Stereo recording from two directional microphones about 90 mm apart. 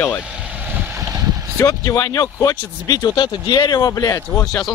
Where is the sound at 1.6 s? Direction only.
40° left (ahead or behind).